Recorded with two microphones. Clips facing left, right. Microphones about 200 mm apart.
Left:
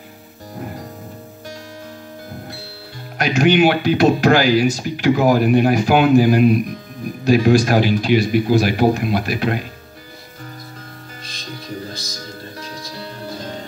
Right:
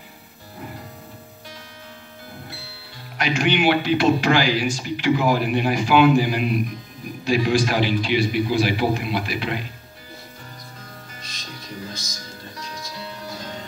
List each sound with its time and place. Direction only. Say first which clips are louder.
3.2 s speech: left 7 dB; 40° left (ahead or behind)
12.5 s music: left 3 dB; 35° left (ahead or behind)